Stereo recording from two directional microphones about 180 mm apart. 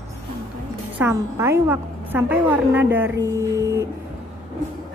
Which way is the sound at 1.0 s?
15° right (ahead or behind).